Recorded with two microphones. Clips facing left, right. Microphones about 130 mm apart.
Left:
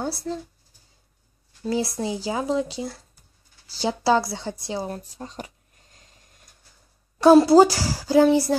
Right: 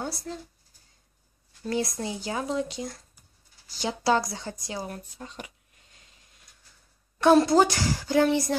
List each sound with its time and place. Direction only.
1.6 s speech: 30° left (ahead or behind)
7.2 s a woman's voice: 35° left (ahead or behind)